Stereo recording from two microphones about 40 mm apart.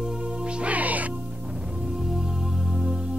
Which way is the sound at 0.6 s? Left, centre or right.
Right.